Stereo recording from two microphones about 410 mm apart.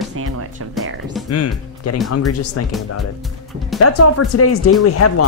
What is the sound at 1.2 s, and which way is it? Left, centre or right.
Speech, left.